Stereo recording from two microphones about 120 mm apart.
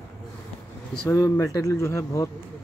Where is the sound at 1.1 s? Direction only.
25° left (ahead or behind).